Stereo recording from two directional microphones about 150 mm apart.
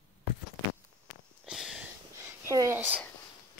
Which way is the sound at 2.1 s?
20° right (ahead or behind).